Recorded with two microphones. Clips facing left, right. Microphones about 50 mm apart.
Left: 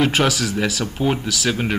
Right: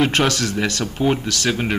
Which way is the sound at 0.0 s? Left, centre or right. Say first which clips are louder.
Even; centre.